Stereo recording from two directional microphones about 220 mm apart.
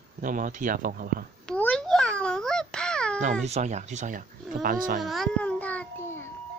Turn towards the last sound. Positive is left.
turn(degrees=5)  # may be behind; listen again after turning